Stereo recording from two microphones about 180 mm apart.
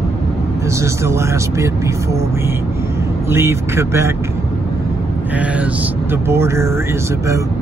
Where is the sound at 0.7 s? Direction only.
15° right (ahead or behind).